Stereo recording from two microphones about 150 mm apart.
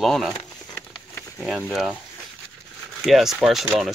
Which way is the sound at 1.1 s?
20° left (ahead or behind).